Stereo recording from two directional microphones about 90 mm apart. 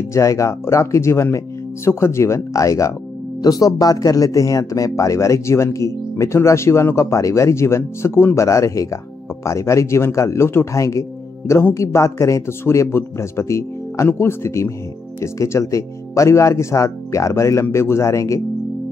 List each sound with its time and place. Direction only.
0.1 s speech: 35° left (ahead or behind)